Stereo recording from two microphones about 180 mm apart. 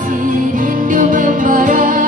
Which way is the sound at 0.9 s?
45° right (ahead or behind).